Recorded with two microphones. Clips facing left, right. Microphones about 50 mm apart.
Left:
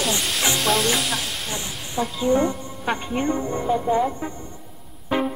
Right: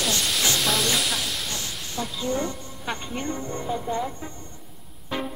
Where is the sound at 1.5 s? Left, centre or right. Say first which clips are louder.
Left 3 dB; centre.